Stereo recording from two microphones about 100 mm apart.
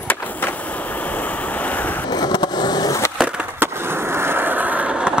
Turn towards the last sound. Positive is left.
turn(degrees=-10)  # may be behind; listen again after turning